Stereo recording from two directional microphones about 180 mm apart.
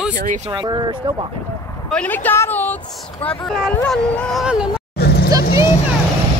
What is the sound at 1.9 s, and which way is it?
A woman's voice, 10° left (ahead or behind).